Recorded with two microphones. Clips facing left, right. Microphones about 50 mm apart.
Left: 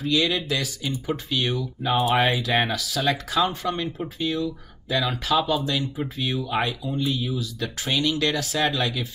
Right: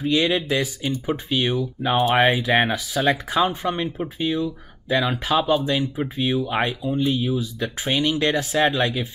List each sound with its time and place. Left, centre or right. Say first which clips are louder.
0.0 s speech: right 3 dB; right
1.8 s speech: right 2 dB; centre
2.1 s speech: right 4 dB; right